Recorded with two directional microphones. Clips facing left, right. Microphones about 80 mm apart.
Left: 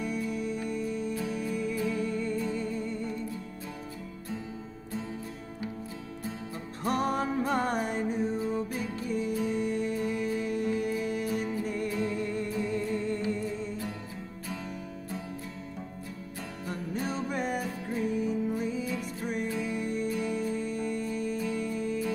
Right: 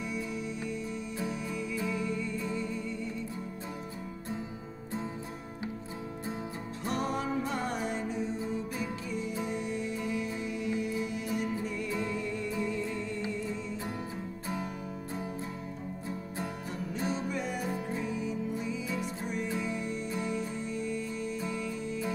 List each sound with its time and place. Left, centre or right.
0.0 s music: left
6.8 s music: left
16.9 s music: left
20.1 s music: right
20.6 s music: left